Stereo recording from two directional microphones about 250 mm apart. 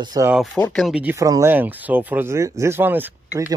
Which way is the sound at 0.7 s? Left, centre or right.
Centre.